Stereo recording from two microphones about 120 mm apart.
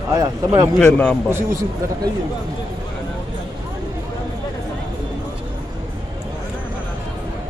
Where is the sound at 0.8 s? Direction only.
10° left (ahead or behind).